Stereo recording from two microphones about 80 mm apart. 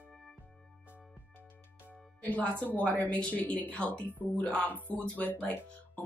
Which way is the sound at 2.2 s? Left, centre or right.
Centre.